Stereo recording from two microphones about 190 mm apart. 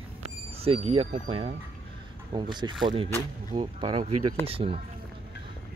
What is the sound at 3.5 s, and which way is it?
Speech, 25° right (ahead or behind).